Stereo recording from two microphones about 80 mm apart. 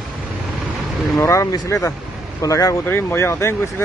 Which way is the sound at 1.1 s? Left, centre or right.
Left.